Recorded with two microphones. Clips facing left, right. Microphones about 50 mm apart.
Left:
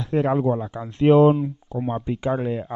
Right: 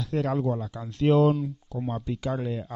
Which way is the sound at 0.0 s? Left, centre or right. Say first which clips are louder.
Left 6 dB; left.